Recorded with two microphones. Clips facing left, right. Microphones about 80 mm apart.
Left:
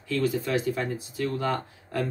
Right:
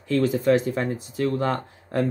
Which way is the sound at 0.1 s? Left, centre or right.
Right.